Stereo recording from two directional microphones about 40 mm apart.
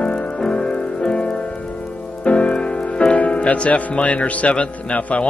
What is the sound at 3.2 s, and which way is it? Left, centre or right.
Speech, left.